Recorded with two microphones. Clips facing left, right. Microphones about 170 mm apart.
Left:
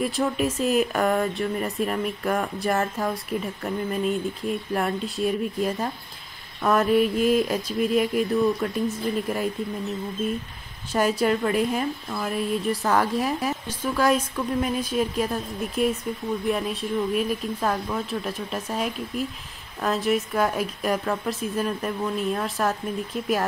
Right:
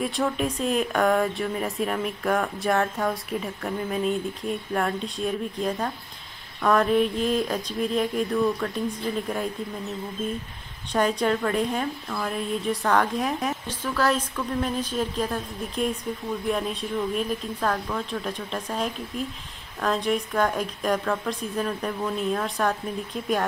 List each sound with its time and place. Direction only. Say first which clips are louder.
0.0 s speech: left 2 dB; centre (ahead or behind)
10.9 s speech: left 1 dB; 5° left (ahead or behind)